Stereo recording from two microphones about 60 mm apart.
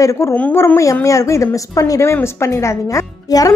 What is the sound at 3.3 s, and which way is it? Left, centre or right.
Speech, left.